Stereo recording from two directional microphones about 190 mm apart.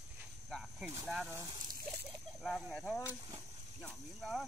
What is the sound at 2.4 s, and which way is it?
Speech, centre (ahead or behind).